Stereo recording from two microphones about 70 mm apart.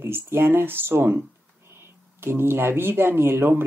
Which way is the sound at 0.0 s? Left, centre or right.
Right.